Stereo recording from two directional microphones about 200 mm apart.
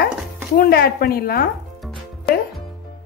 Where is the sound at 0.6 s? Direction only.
50° left (ahead or behind).